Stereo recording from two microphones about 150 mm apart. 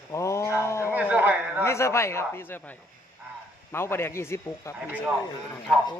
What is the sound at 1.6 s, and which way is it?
Speech, 20° left (ahead or behind).